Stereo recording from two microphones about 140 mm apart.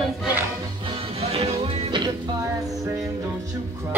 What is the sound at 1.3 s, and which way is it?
Music, 45° right (ahead or behind).